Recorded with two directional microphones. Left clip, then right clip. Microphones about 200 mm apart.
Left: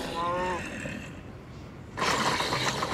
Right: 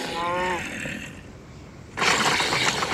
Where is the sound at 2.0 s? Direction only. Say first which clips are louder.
Right 6 dB; 20° right (ahead or behind).